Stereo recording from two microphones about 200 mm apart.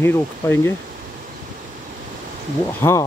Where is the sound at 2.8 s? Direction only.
15° left (ahead or behind).